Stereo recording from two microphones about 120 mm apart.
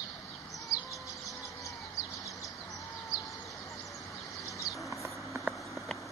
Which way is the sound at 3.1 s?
5° right (ahead or behind).